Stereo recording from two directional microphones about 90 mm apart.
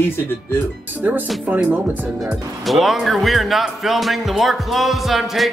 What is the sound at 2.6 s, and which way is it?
A man's voice, centre (ahead or behind).